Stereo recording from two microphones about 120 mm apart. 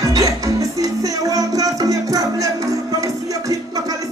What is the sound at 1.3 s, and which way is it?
Music, 30° right (ahead or behind).